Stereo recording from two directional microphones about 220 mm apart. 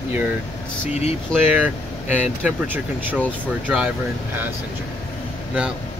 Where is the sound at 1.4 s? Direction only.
5° right (ahead or behind).